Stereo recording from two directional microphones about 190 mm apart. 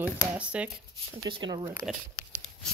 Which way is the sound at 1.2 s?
20° right (ahead or behind).